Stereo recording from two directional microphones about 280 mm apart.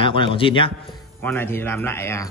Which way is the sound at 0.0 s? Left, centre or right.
Centre.